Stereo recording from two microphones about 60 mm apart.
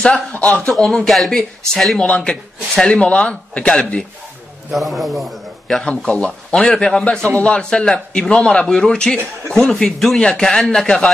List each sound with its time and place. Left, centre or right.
0.0 s a man's voice: left
0.7 s speech: centre
2.0 s a man's voice: centre
4.7 s a man's voice: centre
5.9 s a man's voice: centre